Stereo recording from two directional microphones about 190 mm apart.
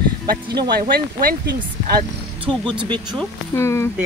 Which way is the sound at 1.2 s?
50° right (ahead or behind).